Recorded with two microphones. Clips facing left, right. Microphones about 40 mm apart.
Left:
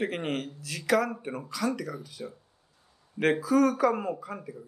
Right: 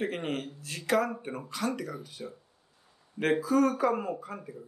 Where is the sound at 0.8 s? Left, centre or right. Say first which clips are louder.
Left 2 dB; centre.